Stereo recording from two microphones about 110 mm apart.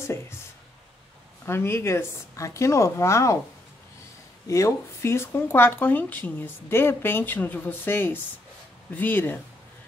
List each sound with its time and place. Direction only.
1.4 s speech: 20° left (ahead or behind)
4.5 s speech: 25° left (ahead or behind)